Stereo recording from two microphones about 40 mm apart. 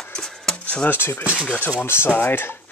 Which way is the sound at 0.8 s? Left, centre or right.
Left.